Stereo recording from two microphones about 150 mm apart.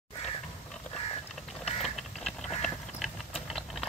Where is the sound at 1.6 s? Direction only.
45° left (ahead or behind).